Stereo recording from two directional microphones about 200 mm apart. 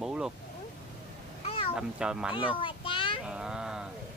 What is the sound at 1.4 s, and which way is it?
Cat, 25° left (ahead or behind).